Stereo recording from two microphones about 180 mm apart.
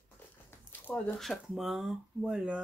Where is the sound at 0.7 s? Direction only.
10° left (ahead or behind).